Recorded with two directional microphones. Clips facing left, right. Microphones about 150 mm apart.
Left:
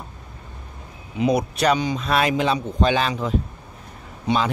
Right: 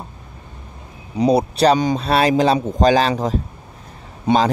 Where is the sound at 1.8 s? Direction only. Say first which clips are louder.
Right 5 dB; 45° right (ahead or behind).